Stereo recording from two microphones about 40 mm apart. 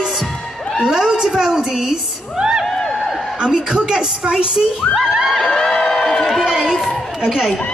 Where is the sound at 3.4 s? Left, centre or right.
Centre.